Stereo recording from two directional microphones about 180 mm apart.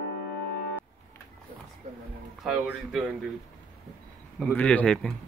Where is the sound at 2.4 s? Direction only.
5° right (ahead or behind).